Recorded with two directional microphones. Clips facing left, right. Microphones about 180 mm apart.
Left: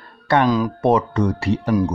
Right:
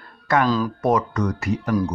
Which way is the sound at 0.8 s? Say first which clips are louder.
Left 3 dB; 30° left (ahead or behind).